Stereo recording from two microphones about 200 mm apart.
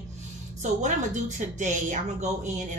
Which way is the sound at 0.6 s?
40° right (ahead or behind).